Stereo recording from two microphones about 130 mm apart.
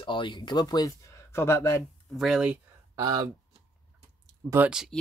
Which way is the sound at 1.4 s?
20° left (ahead or behind).